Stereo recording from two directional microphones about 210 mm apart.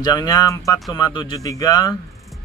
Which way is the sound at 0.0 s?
20° left (ahead or behind).